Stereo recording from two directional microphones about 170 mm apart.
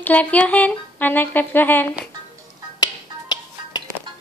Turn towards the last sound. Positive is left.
turn(degrees=25)  # may be behind; listen again after turning